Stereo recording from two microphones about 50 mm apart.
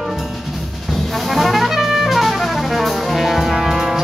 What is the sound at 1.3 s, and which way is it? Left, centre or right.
Music, centre.